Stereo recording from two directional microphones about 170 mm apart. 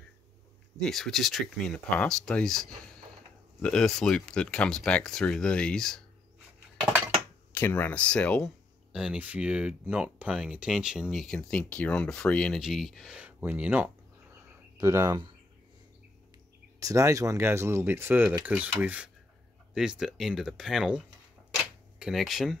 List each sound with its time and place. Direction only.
0.7 s speech: 5° left (ahead or behind)
7.5 s speech: 15° left (ahead or behind)
8.9 s speech: 5° right (ahead or behind); by 15.3 s 25° right (ahead or behind)
16.8 s speech: 20° right (ahead or behind); by 22.6 s centre (ahead or behind)